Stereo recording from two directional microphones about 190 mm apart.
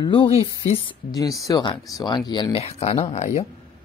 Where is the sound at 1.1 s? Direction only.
20° left (ahead or behind); by 3.4 s 35° left (ahead or behind).